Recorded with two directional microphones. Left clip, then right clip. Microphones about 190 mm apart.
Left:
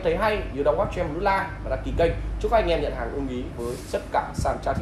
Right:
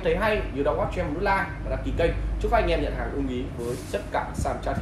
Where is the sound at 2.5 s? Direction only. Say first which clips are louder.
Left 2 dB; 35° left (ahead or behind).